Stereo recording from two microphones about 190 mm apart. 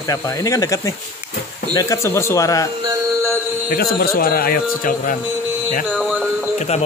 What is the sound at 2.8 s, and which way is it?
Music, 15° right (ahead or behind).